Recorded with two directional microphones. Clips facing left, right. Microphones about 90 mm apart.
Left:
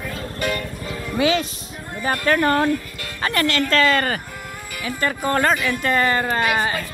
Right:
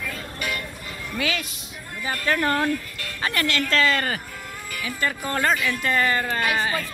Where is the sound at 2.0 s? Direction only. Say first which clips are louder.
Left 5 dB; 55° left (ahead or behind).